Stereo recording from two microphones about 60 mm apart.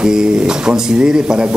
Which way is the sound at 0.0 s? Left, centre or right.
Centre.